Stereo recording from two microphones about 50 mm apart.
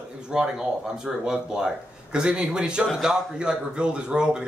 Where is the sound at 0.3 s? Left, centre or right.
Centre.